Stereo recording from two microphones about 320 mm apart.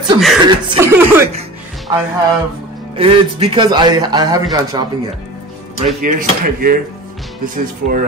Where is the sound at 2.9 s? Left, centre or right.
Centre.